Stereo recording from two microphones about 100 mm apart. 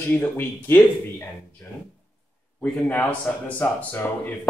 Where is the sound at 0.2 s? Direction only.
20° left (ahead or behind).